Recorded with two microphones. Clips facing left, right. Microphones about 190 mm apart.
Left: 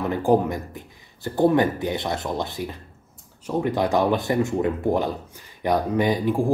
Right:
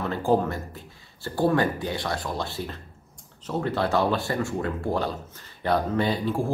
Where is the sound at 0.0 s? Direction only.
15° left (ahead or behind).